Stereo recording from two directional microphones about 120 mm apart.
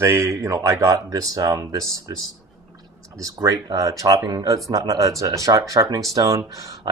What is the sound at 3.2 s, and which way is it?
Speech, 30° right (ahead or behind).